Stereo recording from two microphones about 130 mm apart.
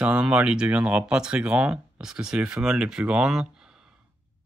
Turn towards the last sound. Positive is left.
turn(degrees=-5)  # may be behind; listen again after turning